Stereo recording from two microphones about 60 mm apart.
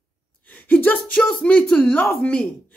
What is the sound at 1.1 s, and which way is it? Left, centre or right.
Speech, centre.